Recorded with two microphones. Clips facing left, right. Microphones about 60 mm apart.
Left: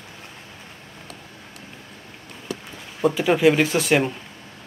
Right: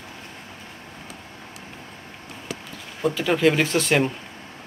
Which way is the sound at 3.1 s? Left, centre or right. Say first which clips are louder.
Left 2 dB; centre.